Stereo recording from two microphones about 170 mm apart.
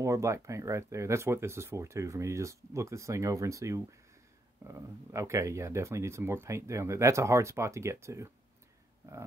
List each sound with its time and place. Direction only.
0.0 s speech: 15° right (ahead or behind)